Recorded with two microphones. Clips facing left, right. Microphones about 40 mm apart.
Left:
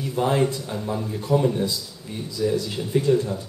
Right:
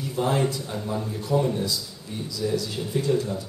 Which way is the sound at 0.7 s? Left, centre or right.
Centre.